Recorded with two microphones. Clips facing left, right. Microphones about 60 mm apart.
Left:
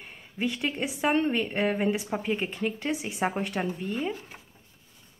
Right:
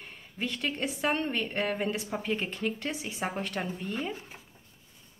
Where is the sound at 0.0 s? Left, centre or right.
Centre.